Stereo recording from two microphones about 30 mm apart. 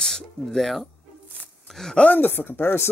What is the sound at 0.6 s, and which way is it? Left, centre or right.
Speech, centre.